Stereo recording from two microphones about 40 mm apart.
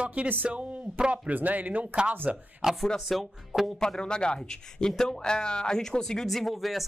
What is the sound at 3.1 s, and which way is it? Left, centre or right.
Speech, centre.